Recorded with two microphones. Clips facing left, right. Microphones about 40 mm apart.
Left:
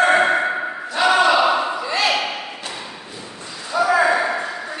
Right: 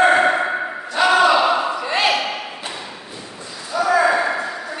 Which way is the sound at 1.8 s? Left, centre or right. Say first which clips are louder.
Right 1 dB; right.